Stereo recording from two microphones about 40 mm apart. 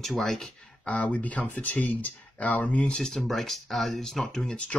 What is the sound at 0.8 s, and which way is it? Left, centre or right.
Speech, left.